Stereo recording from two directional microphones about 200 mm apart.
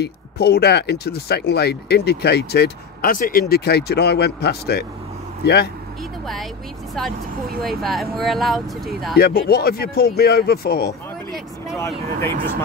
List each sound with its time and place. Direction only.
0.0 s speech: 55° left (ahead or behind)
7.6 s speech: centre (ahead or behind)
9.1 s speech: 50° left (ahead or behind)
12.2 s speech: 10° left (ahead or behind)